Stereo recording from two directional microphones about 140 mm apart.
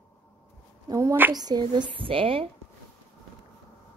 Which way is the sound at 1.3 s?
30° right (ahead or behind).